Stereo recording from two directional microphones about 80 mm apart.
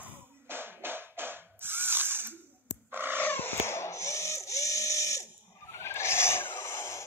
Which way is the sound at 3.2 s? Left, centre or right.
Left.